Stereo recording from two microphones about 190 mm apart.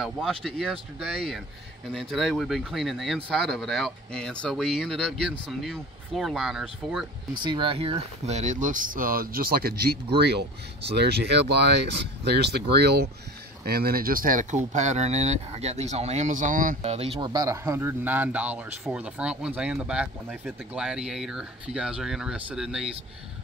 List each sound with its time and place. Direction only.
0.0 s speech: centre (ahead or behind)
7.3 s speech: 25° right (ahead or behind); by 22.8 s 5° right (ahead or behind)